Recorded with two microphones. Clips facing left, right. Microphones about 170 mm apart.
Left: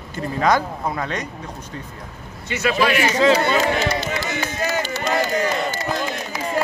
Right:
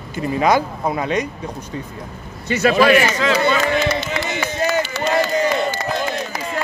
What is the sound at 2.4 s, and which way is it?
Speech, 40° right (ahead or behind).